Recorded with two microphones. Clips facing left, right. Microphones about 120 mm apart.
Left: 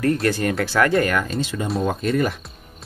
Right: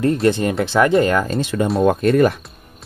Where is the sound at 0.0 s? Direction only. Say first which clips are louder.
Right 4 dB; 25° right (ahead or behind).